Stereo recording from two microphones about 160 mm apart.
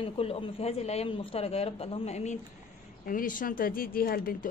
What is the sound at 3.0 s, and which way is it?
A woman's voice, 60° left (ahead or behind).